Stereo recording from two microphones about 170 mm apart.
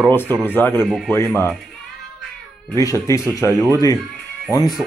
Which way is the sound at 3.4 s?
20° left (ahead or behind).